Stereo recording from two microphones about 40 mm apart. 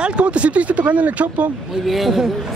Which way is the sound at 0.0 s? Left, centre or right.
Right.